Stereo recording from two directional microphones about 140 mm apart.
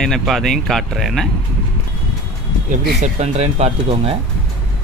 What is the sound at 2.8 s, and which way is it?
Speech, 60° right (ahead or behind).